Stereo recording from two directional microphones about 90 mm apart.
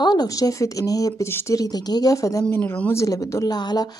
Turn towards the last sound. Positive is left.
turn(degrees=50)  # may be behind; listen again after turning